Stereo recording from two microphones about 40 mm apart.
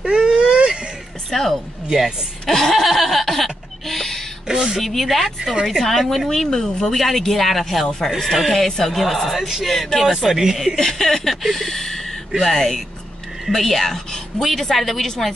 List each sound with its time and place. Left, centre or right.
0.0 s baby cry: right
1.3 s a woman's voice: centre
2.7 s music: centre
4.5 s speech: centre
4.8 s a woman's voice: centre
6.0 s a woman's voice: centre
10.1 s speech: centre
10.8 s a woman's voice: centre